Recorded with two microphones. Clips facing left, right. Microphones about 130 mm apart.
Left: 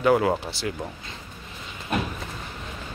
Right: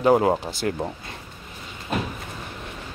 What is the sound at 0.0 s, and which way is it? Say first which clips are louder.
Speech: right 2 dB; 35° right (ahead or behind).